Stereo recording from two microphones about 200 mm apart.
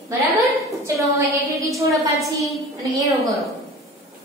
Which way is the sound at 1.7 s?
15° right (ahead or behind).